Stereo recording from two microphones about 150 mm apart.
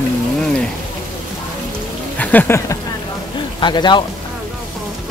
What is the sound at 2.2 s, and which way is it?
Speech, 10° left (ahead or behind).